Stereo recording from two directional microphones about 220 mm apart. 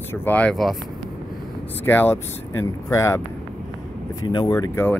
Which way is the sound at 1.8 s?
10° left (ahead or behind).